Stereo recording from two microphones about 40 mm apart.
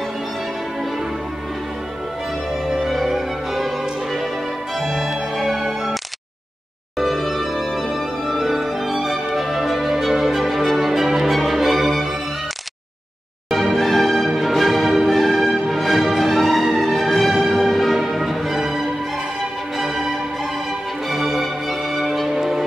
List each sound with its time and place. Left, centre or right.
2.8 s music: centre
7.0 s music: centre
13.5 s music: centre